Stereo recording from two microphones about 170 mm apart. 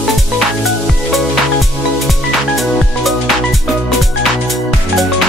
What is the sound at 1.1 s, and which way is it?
Music, centre (ahead or behind).